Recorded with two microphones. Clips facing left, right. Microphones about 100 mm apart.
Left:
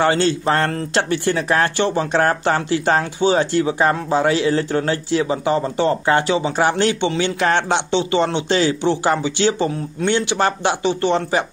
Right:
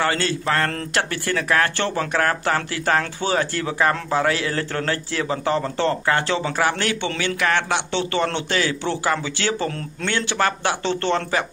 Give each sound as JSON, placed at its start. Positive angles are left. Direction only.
{"t": 0.0, "sound": "speech", "side_deg": 25}
{"t": 9.7, "sound": "speech", "side_deg": 10}
{"t": 10.0, "sound": "speech", "side_deg": 20}